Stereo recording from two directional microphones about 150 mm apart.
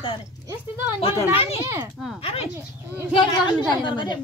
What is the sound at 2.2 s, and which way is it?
Speech, 40° left (ahead or behind).